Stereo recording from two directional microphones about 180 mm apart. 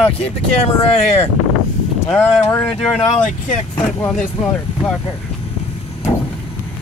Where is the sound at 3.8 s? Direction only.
5° left (ahead or behind).